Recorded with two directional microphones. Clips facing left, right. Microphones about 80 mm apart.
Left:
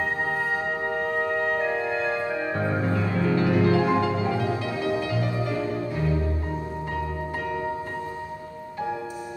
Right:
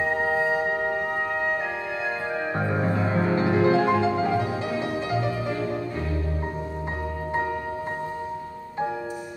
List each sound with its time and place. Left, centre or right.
0.0 s music: centre
2.5 s music: right